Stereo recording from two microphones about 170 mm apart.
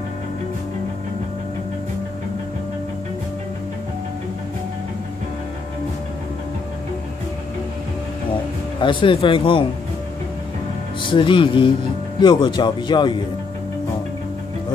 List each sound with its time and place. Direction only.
8.8 s speech: 30° left (ahead or behind)
11.0 s speech: 30° left (ahead or behind)